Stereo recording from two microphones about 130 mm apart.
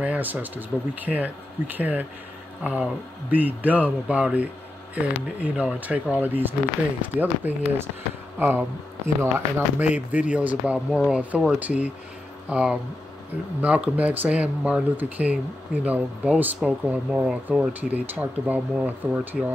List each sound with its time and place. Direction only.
0.0 s speech: 10° right (ahead or behind)
9.8 s speech: 10° right (ahead or behind)